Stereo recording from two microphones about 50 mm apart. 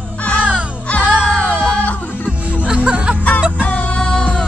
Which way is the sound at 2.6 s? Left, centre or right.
Centre.